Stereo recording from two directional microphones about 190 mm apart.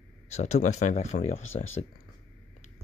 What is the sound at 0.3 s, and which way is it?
Speech, 35° left (ahead or behind).